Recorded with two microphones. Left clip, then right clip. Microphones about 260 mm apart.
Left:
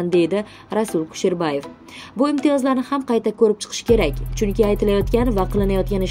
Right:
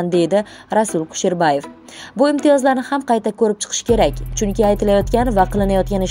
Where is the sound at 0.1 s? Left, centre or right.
Centre.